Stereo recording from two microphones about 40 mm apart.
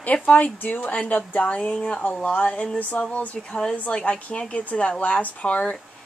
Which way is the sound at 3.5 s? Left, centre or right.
Left.